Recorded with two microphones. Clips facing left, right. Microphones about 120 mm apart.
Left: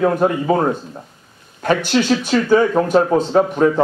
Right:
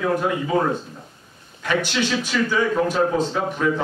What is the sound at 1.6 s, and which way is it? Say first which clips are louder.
A man's voice: left 7 dB; 45° left (ahead or behind).